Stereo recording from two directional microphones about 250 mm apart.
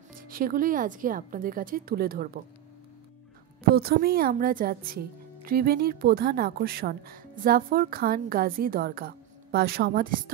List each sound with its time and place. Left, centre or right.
0.1 s speech: right
3.6 s speech: right